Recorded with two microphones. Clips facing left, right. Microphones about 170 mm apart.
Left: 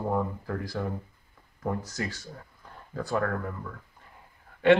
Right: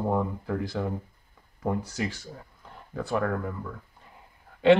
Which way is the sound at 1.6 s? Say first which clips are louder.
Right 2 dB; 15° right (ahead or behind).